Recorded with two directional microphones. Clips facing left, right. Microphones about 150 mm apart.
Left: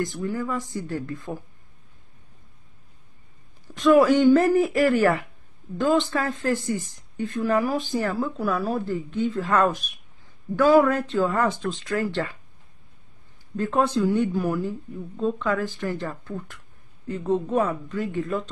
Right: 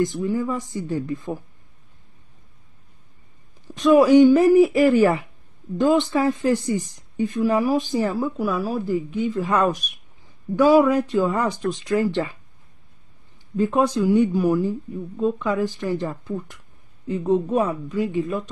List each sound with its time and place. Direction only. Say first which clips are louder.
0.0 s speech: right 5 dB; 20° right (ahead or behind)
3.7 s speech: right 3 dB; 20° right (ahead or behind)
13.6 s speech: right 3 dB; 15° right (ahead or behind)